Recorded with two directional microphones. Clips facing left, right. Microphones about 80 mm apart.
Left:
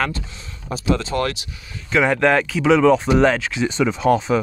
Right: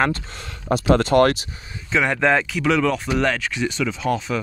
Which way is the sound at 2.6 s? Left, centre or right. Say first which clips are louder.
Left 6 dB; centre.